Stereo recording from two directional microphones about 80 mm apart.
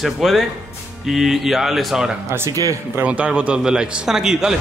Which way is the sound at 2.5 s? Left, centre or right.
Right.